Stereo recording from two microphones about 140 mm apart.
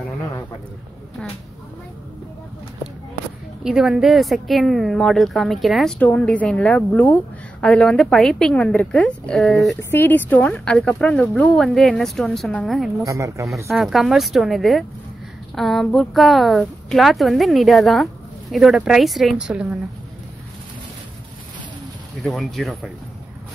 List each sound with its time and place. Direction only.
3.6 s a woman's voice: 5° right (ahead or behind)
9.8 s speech: 15° left (ahead or behind)
13.0 s speech: 20° right (ahead or behind)
13.7 s a woman's voice: centre (ahead or behind)
22.2 s a woman's voice: centre (ahead or behind)